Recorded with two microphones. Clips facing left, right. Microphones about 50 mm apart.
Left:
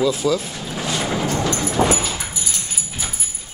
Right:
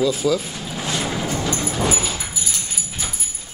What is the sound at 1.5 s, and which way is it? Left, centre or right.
Dog, centre.